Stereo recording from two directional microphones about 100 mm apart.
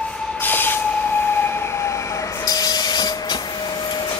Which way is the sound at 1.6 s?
25° left (ahead or behind).